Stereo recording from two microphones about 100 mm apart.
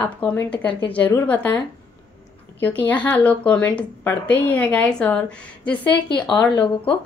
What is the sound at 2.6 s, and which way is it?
Speech, 15° left (ahead or behind).